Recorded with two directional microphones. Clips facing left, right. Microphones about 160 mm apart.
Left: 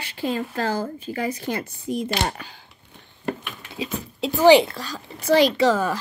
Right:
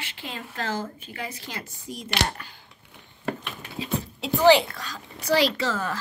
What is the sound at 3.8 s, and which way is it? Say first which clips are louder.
Speech: left 2 dB; 15° left (ahead or behind).